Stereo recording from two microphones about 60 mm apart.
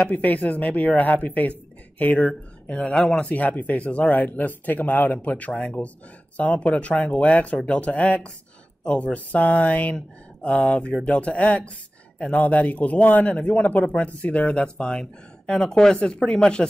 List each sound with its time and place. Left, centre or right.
0.0 s speech: left
2.6 s speech: centre